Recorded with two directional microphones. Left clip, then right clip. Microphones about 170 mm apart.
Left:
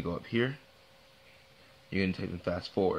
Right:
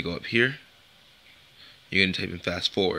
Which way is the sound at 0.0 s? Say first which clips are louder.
Right 8 dB; 15° right (ahead or behind).